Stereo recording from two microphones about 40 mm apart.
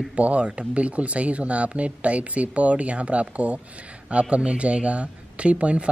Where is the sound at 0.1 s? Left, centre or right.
Right.